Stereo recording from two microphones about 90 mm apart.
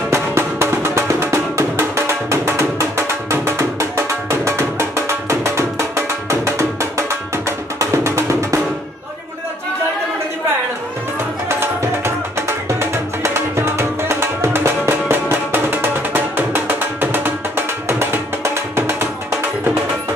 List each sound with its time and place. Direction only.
0.1 s music: 30° right (ahead or behind)
11.4 s music: 25° right (ahead or behind)